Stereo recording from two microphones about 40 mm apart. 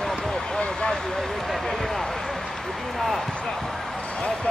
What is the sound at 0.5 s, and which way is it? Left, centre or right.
Vehicle, left.